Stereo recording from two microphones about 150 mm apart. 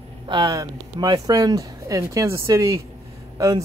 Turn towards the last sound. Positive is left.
turn(degrees=-25)  # may be behind; listen again after turning